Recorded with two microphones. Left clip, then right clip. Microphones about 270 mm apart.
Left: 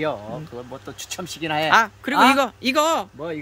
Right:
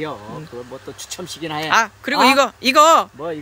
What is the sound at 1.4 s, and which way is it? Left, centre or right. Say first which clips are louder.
Speech: even; centre.